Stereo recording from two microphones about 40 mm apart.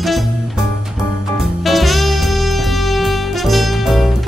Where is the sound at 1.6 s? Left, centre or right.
Centre.